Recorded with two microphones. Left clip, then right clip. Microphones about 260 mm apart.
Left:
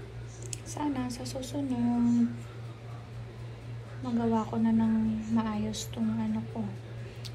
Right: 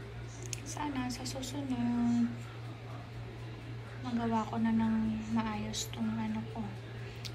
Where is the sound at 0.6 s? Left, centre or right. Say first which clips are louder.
Left 4 dB; centre.